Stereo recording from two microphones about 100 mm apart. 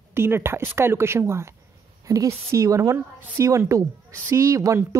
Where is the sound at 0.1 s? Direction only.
25° right (ahead or behind).